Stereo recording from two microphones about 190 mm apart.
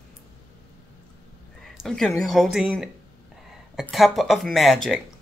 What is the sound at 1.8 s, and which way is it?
Speech, centre (ahead or behind).